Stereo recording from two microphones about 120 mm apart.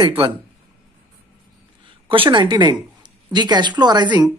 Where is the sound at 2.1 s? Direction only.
45° right (ahead or behind).